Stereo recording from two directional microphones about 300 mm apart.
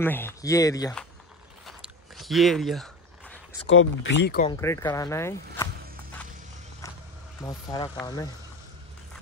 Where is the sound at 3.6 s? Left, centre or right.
Left.